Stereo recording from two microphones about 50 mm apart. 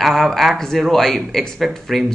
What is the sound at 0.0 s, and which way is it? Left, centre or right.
Speech, centre.